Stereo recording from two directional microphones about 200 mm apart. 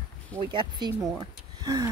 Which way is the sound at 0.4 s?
25° right (ahead or behind).